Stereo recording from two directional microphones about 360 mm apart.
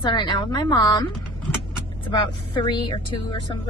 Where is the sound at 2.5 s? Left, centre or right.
Centre.